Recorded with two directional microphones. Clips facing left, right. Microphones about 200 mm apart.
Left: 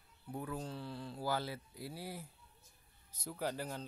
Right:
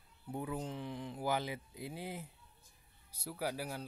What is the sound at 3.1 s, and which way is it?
Speech, 10° right (ahead or behind).